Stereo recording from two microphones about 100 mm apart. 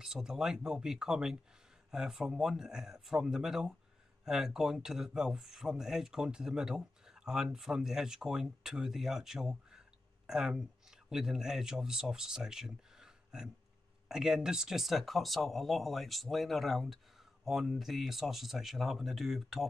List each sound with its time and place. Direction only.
0.0 s speech: 5° right (ahead or behind)